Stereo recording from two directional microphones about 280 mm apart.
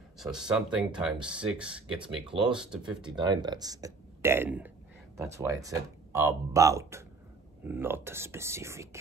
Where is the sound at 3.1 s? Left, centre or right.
Centre.